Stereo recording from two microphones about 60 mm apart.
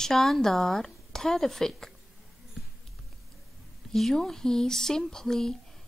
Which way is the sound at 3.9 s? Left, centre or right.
Centre.